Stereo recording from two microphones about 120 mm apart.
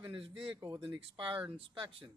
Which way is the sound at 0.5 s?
35° right (ahead or behind).